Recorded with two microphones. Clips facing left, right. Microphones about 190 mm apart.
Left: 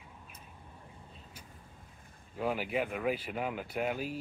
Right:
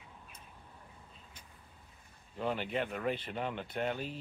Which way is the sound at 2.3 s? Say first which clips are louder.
Left 2 dB; 5° left (ahead or behind).